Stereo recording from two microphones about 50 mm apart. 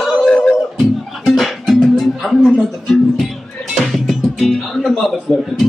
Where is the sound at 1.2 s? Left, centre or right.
Centre.